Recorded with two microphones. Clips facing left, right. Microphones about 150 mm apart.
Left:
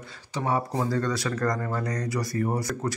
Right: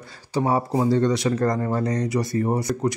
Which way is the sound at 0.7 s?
20° right (ahead or behind).